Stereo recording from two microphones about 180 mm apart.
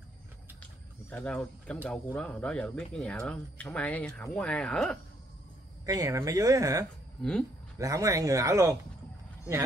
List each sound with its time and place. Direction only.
1.1 s speech: 5° left (ahead or behind)
5.9 s speech: 20° right (ahead or behind)
7.2 s speech: 5° left (ahead or behind)
7.8 s speech: 20° right (ahead or behind)